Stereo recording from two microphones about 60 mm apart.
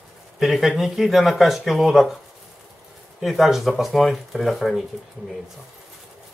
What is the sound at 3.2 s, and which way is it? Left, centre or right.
Speech, centre.